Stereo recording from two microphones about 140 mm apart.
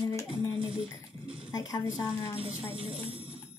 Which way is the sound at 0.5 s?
40° right (ahead or behind).